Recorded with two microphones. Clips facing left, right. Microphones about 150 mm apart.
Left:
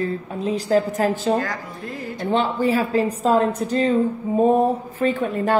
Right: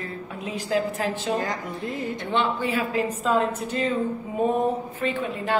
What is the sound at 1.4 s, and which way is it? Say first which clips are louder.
Speech: even; 20° right (ahead or behind).